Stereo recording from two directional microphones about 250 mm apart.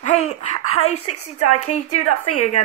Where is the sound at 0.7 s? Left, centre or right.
Left.